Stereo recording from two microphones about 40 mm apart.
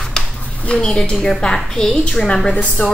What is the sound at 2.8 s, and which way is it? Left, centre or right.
Speech, left.